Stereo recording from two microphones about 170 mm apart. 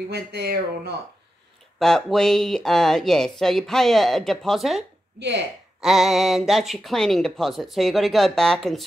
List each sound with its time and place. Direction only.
0.1 s speech: 70° right (ahead or behind)
1.8 s speech: 5° left (ahead or behind)